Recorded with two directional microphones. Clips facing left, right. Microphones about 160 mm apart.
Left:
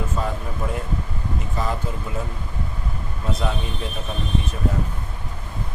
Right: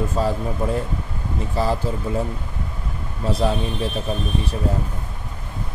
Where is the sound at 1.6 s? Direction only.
35° right (ahead or behind).